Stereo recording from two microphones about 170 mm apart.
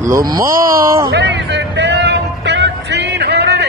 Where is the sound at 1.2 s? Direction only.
90° right.